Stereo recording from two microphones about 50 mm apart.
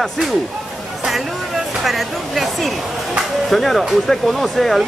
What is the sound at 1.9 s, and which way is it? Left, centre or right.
Speech, centre.